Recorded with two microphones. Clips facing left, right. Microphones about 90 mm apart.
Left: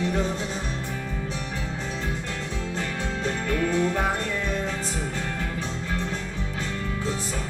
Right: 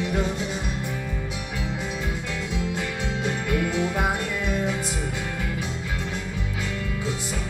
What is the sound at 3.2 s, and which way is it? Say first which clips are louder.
Music: even; 10° right (ahead or behind).